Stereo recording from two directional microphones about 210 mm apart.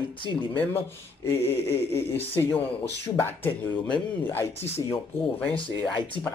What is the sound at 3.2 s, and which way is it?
Speech, 10° left (ahead or behind).